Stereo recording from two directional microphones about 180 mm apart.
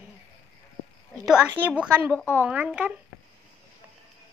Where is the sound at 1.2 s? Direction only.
5° right (ahead or behind).